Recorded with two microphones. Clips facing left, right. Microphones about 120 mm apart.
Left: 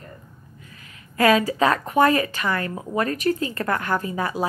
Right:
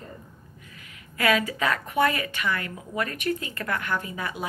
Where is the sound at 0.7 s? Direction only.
35° left (ahead or behind).